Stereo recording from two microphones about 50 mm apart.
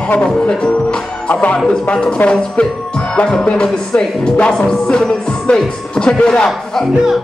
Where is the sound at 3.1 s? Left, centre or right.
Left.